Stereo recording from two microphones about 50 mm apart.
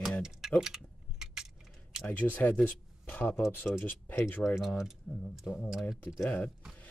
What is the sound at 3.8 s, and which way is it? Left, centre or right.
Speech, left.